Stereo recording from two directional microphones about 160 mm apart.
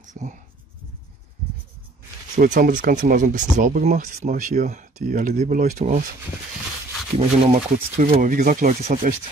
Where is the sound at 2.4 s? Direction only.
55° right (ahead or behind).